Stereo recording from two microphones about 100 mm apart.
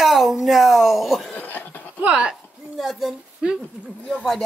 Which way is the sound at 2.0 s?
10° right (ahead or behind).